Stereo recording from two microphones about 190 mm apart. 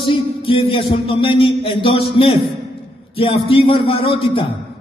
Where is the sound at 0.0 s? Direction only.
30° left (ahead or behind).